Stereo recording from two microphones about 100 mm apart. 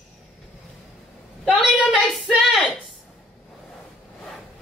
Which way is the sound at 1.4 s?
10° right (ahead or behind).